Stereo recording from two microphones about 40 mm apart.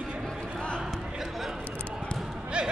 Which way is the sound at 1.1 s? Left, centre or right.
Centre.